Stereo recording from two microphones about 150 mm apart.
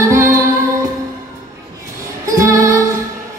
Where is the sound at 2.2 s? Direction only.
20° right (ahead or behind).